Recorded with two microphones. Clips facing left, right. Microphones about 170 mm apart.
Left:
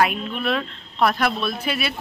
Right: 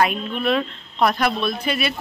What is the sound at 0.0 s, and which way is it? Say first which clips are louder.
Speech: right 1 dB; 5° left (ahead or behind).